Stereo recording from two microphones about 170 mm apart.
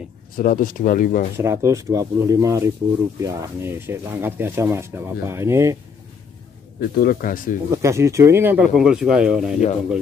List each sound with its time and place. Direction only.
0.4 s speech: 55° left (ahead or behind)
1.3 s speech: 15° right (ahead or behind)
6.8 s speech: 60° left (ahead or behind)
7.7 s speech: 15° right (ahead or behind)